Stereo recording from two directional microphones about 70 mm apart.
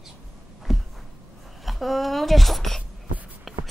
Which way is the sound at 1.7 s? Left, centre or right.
Centre.